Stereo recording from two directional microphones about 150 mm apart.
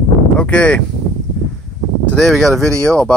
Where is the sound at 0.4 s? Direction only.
5° left (ahead or behind).